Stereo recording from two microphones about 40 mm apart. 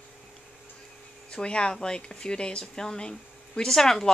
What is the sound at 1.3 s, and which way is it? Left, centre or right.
Speech, left.